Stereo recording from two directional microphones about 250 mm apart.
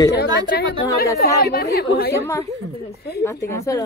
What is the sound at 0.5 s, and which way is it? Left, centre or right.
Speech, left.